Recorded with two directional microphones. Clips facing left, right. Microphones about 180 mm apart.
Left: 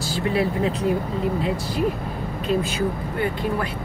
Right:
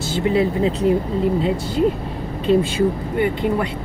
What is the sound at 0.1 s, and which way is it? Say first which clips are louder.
Speech: right 4 dB; 20° right (ahead or behind).